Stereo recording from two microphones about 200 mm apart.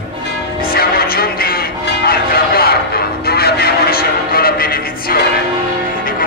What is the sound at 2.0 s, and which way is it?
Change ringing, 50° left (ahead or behind).